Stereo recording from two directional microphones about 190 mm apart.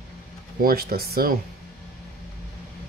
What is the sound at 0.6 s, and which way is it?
Speech, 55° right (ahead or behind).